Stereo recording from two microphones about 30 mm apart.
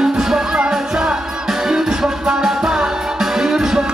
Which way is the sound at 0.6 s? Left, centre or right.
Right.